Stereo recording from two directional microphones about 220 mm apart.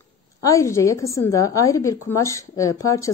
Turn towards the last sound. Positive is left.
turn(degrees=15)  # may be behind; listen again after turning